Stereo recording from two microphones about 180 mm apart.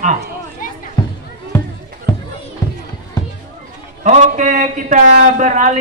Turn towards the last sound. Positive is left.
turn(degrees=-45)  # may be behind; listen again after turning